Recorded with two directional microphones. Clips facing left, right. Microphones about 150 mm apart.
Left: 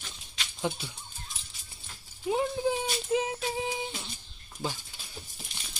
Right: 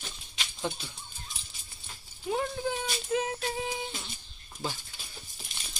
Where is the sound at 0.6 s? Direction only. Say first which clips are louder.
Left 3 dB; 10° left (ahead or behind).